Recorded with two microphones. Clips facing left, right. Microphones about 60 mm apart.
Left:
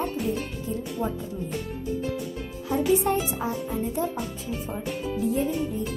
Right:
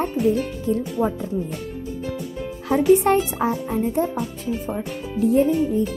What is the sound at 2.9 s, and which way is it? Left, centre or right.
Music, right.